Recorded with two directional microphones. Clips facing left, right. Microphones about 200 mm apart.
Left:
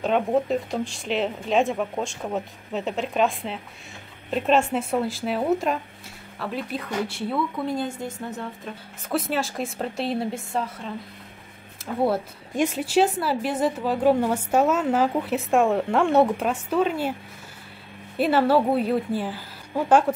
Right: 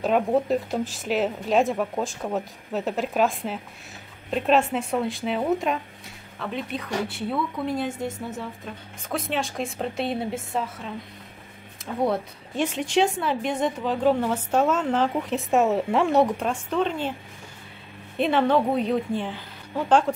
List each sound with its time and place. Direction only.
0.0 s a woman's voice: centre (ahead or behind)
18.1 s a woman's voice: 5° left (ahead or behind)